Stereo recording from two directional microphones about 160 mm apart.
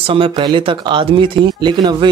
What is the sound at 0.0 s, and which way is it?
Speech, 35° right (ahead or behind).